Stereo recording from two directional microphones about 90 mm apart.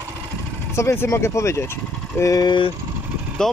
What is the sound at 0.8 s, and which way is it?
Speech, 30° left (ahead or behind).